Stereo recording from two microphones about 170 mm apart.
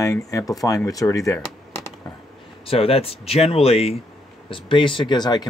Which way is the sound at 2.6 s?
35° left (ahead or behind).